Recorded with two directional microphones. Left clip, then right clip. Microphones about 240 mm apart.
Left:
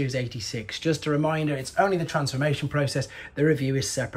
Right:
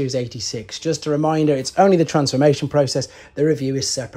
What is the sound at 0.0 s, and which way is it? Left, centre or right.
Speech, centre.